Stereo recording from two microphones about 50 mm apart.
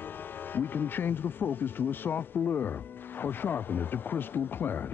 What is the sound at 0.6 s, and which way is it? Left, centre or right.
Speech, left.